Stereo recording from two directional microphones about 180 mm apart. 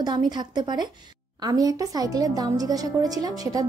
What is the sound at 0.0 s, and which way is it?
A woman's voice, 25° right (ahead or behind).